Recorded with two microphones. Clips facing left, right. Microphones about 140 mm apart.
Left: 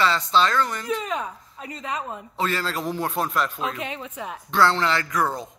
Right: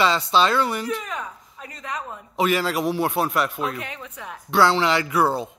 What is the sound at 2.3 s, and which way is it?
A man's voice, 15° right (ahead or behind).